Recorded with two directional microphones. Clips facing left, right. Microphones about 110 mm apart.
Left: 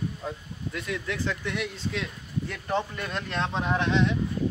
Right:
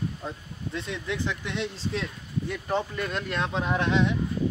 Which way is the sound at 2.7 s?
5° right (ahead or behind).